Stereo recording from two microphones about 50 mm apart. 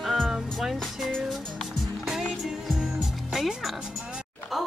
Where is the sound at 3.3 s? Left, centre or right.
Centre.